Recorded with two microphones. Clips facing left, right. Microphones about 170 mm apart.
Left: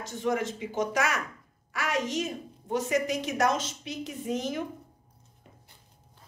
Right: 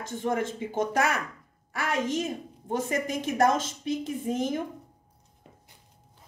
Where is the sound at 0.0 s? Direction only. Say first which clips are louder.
Even; 55° right (ahead or behind).